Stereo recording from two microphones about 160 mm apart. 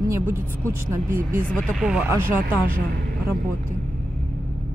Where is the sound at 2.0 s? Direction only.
15° right (ahead or behind).